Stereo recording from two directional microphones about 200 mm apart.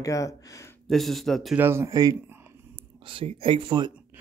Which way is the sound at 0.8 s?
Centre (ahead or behind).